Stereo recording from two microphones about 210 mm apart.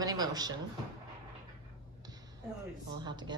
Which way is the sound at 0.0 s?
20° right (ahead or behind).